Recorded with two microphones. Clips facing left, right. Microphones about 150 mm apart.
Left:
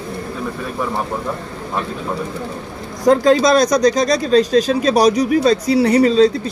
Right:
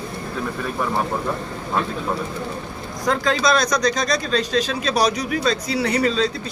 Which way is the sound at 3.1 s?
35° left (ahead or behind).